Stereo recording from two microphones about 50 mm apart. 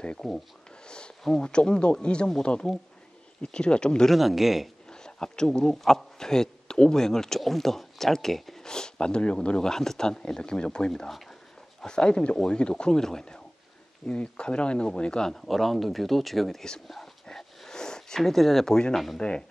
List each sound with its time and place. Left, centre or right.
0.2 s speech: centre
0.8 s speech: centre
4.1 s speech: centre
4.8 s speech: centre
10.9 s speech: centre
11.8 s speech: centre
14.0 s speech: left; by 16.7 s centre
16.8 s a sound: centre
19.1 s speech: centre